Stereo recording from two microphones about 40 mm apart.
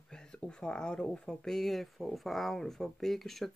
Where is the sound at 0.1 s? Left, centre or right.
Left.